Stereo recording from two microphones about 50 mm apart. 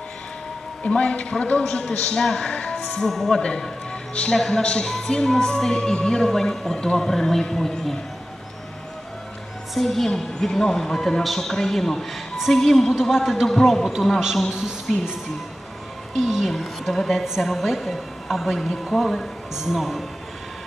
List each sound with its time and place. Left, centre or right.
0.8 s a man's voice: left; by 7.9 s centre
9.8 s a woman's voice: centre
12.9 s a woman's voice: centre
13.8 s a woman's voice: centre
16.2 s music: centre
17.1 s a woman's voice: centre
19.5 s speech: centre